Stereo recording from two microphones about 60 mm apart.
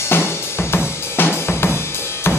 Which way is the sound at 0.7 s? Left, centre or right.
Left.